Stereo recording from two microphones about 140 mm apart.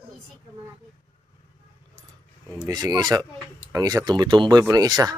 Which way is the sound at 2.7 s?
30° right (ahead or behind).